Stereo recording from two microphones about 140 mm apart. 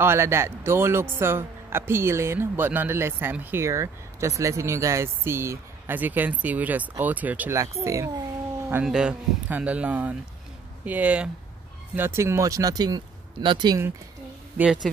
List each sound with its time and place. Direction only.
0.0 s a man's voice: 15° right (ahead or behind)
8.8 s a man's voice: 5° right (ahead or behind); by 13.8 s 30° right (ahead or behind)
14.6 s a man's voice: 5° right (ahead or behind)